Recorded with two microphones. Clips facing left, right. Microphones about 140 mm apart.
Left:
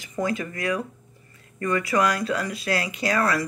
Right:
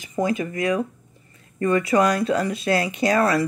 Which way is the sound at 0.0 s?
20° right (ahead or behind).